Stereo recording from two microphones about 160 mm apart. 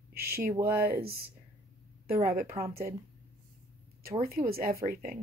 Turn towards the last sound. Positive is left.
turn(degrees=-65)  # may be behind; listen again after turning